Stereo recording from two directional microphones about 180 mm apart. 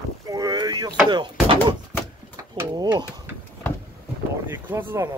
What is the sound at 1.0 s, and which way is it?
Speech, 25° right (ahead or behind).